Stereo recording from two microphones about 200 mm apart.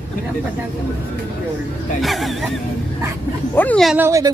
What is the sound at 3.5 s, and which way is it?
Speech, 10° left (ahead or behind).